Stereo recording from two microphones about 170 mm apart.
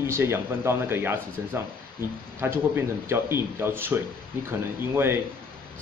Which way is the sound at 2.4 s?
15° right (ahead or behind).